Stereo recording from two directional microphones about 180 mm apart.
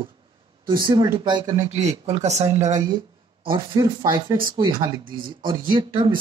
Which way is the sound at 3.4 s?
25° right (ahead or behind).